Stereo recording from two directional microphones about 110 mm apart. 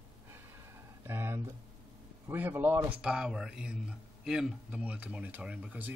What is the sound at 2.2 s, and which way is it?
Speech, 20° right (ahead or behind).